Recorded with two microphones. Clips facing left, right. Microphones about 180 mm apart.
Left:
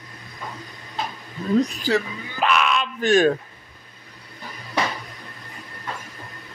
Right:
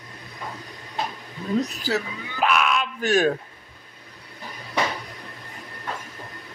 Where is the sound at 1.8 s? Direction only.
5° right (ahead or behind).